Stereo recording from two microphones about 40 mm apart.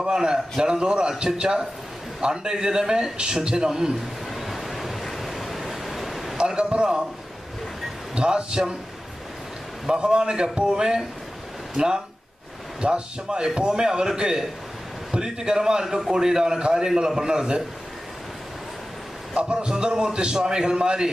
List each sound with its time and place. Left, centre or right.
0.0 s a man's voice: centre
4.3 s a sound: centre
5.0 s waves: centre
6.3 s a man's voice: right
8.1 s a man's voice: right
9.8 s a man's voice: centre
19.3 s a man's voice: right
20.1 s a man's voice: right